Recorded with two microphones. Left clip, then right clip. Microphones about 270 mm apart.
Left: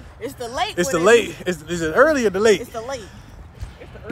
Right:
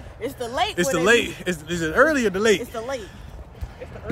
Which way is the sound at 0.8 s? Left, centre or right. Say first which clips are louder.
Left 4 dB; centre.